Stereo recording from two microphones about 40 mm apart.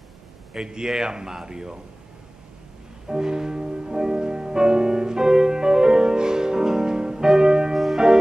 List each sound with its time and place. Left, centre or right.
0.5 s a man's voice: centre
3.1 s music: centre
7.7 s music: centre